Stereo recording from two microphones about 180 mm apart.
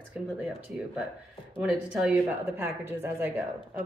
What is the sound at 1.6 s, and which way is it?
A woman's voice, 5° right (ahead or behind).